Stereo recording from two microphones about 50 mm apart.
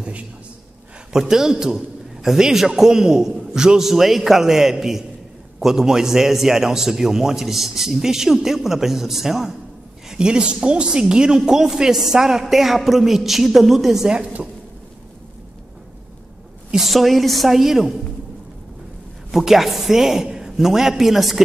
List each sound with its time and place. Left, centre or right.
1.1 s a woman's voice: centre
14.1 s a woman's voice: centre
16.7 s a woman's voice: centre
19.3 s a woman's voice: centre